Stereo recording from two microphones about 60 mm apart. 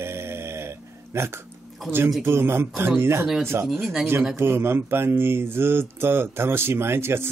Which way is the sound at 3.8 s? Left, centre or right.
Centre.